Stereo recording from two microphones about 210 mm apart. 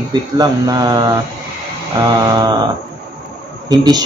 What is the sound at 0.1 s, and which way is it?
Speech, 20° right (ahead or behind).